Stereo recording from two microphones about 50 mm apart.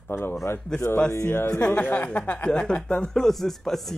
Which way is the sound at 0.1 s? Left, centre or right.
Left.